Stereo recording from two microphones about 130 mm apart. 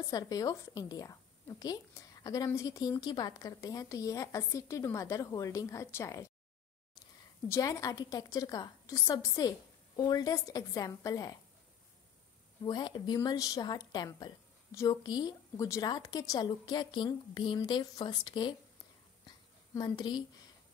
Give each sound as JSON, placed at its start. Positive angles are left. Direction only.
{"t": 0.1, "sound": "speech", "side_deg": 30}
{"t": 7.4, "sound": "speech", "side_deg": 20}
{"t": 12.6, "sound": "a woman's voice", "side_deg": 35}
{"t": 19.2, "sound": "a sound", "side_deg": 30}